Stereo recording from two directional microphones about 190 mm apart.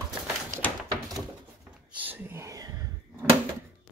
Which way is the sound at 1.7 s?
10° right (ahead or behind).